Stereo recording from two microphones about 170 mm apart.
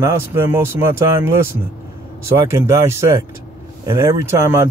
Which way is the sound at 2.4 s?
15° right (ahead or behind).